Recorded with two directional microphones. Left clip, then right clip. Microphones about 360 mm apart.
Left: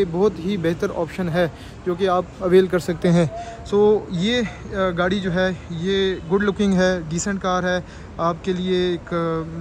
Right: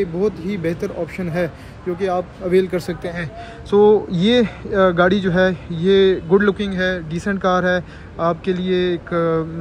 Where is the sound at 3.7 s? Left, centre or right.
Centre.